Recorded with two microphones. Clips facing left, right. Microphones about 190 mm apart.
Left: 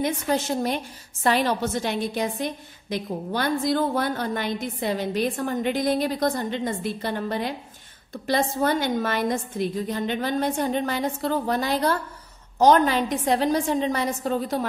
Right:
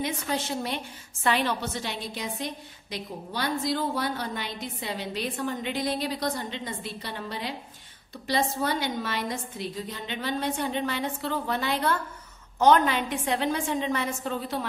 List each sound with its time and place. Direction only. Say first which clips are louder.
0.0 s a woman's voice: left 5 dB; 45° left (ahead or behind)